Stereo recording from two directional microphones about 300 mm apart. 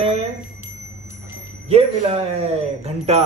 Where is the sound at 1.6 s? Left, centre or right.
Right.